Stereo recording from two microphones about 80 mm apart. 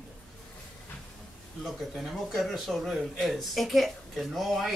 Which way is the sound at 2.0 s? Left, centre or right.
Centre.